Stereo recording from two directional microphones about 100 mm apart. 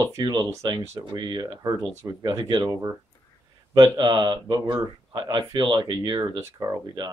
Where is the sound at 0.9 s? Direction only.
40° right (ahead or behind).